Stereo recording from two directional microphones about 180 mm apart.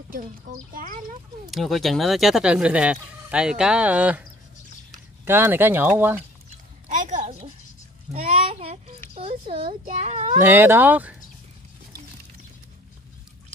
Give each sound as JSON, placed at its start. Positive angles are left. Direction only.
{"t": 0.1, "sound": "speech", "side_deg": -50}
{"t": 1.5, "sound": "speech", "side_deg": 0}
{"t": 6.9, "sound": "a sound", "side_deg": -45}
{"t": 7.2, "sound": "a sound", "side_deg": -35}
{"t": 8.1, "sound": "a child's voice", "side_deg": -35}
{"t": 10.4, "sound": "speech", "side_deg": -10}